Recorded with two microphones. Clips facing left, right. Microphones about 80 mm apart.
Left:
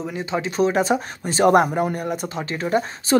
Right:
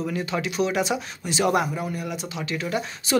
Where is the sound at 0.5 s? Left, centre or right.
Left.